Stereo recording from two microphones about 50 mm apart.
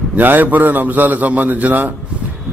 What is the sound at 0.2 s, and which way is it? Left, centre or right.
A man's voice, right.